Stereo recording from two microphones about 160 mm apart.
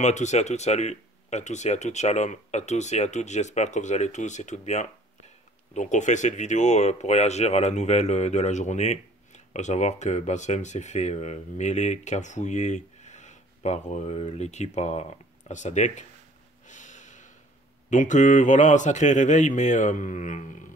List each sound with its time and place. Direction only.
0.0 s speech: 45° left (ahead or behind)
16.6 s snort: 50° left (ahead or behind)
17.8 s speech: 50° left (ahead or behind)